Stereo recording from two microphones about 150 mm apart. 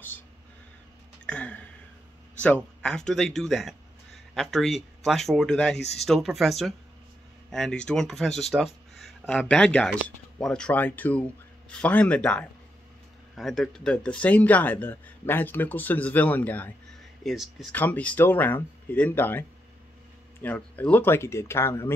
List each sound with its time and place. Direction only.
1.2 s a sound: 10° left (ahead or behind)
2.4 s speech: 5° left (ahead or behind)
17.2 s speech: centre (ahead or behind)
17.7 s speech: 10° left (ahead or behind)
20.4 s speech: 10° left (ahead or behind)